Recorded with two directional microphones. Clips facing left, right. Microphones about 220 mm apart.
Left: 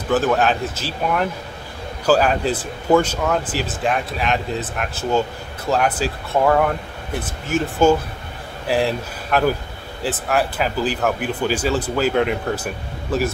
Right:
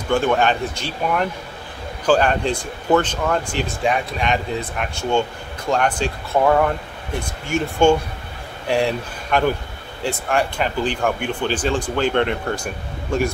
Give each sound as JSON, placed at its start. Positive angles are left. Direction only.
{"t": 0.1, "sound": "speech", "side_deg": 5}